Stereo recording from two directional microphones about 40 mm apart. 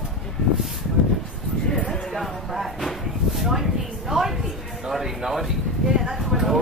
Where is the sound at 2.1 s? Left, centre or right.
Centre.